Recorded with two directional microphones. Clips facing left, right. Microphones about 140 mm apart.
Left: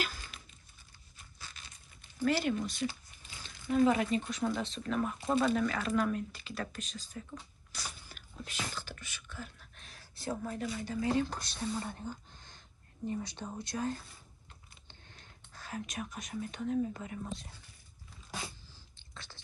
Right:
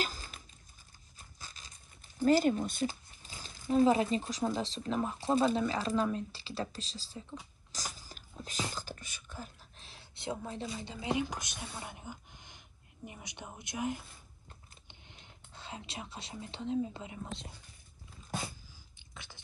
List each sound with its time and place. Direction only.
2.1 s speech: 40° right (ahead or behind)
7.7 s biting: 35° right (ahead or behind)
9.3 s a woman's voice: 35° right (ahead or behind); by 17.6 s 20° right (ahead or behind)
18.9 s whispering: 15° right (ahead or behind)